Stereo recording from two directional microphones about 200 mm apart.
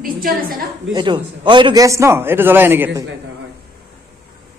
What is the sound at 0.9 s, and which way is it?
A man's voice, 25° right (ahead or behind).